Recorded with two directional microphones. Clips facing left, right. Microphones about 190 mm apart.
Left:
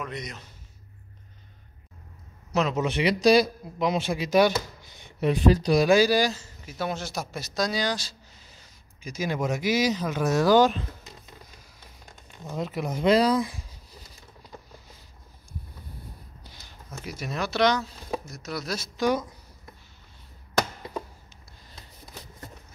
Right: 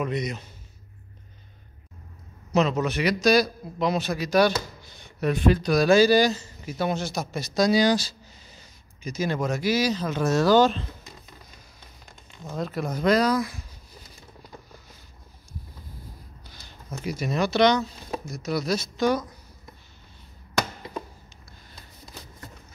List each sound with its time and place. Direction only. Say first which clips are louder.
0.1 s speech: right 8 dB; 5° right (ahead or behind)
2.5 s speech: right 3 dB; 5° left (ahead or behind)
2.8 s speech: left 1 dB; 25° left (ahead or behind)
5.6 s speech: even; 30° left (ahead or behind)
5.9 s a man's voice: right 5 dB; 10° left (ahead or behind)
9.0 s speech: right 2 dB; 10° left (ahead or behind)
12.5 s speech: right 1 dB; 20° left (ahead or behind)
17.0 s speech: right 6 dB; centre (ahead or behind)